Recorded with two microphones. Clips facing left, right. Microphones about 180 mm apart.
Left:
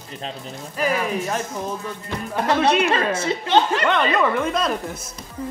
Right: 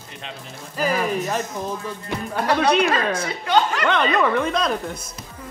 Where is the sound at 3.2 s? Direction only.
30° left (ahead or behind).